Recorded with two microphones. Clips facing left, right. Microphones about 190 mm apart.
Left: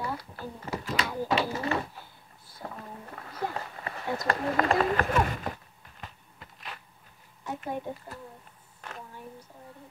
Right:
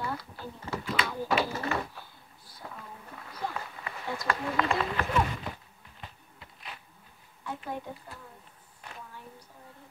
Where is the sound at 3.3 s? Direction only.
40° left (ahead or behind).